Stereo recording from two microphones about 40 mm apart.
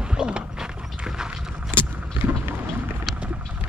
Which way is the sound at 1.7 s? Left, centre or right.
Right.